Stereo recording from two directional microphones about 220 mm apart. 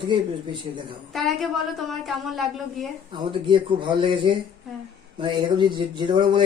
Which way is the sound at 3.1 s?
20° right (ahead or behind).